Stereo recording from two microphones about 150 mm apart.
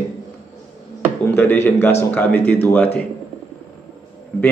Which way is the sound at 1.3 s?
15° left (ahead or behind).